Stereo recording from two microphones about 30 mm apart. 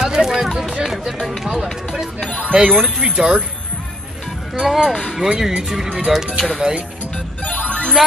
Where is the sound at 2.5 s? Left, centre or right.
Right.